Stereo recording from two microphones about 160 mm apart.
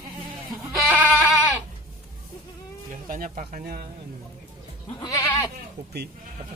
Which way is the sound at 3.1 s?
55° right (ahead or behind).